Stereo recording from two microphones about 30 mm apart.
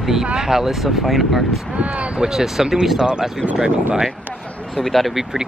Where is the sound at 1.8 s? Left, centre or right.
Right.